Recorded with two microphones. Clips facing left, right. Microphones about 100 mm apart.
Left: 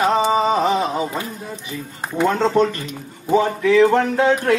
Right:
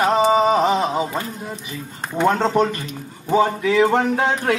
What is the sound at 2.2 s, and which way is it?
Speech, 15° right (ahead or behind).